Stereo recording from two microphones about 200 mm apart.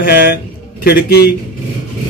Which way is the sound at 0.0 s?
50° left (ahead or behind).